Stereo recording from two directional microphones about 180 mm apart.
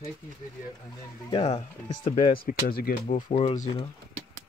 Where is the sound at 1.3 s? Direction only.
35° left (ahead or behind).